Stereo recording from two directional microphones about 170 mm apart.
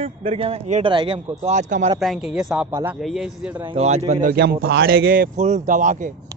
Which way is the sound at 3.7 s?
40° right (ahead or behind).